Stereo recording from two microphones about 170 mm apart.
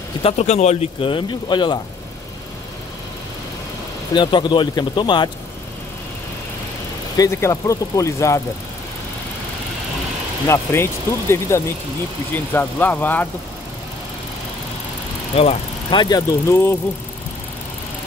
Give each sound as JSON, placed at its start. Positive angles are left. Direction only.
{"t": 0.2, "sound": "speech", "side_deg": 40}
{"t": 4.1, "sound": "speech", "side_deg": 25}
{"t": 7.2, "sound": "speech", "side_deg": 15}
{"t": 10.5, "sound": "speech", "side_deg": 15}
{"t": 15.3, "sound": "speech", "side_deg": 30}